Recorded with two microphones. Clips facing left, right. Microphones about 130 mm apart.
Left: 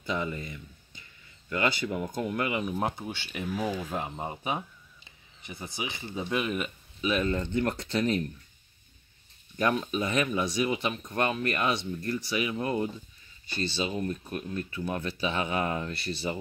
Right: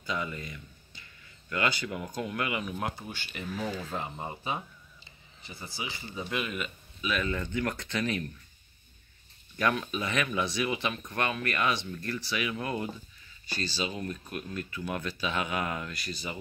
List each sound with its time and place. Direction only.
0.0 s speech: 25° left (ahead or behind)
3.3 s speech: 10° left (ahead or behind); by 8.3 s 25° left (ahead or behind)
9.6 s speech: 25° left (ahead or behind)